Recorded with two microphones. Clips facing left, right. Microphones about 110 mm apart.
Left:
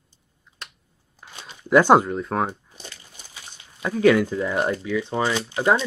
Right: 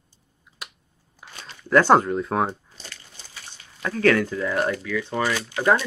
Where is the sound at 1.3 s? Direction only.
15° left (ahead or behind).